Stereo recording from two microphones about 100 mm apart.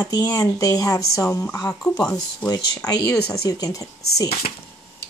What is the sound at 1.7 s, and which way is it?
Speech, 10° left (ahead or behind).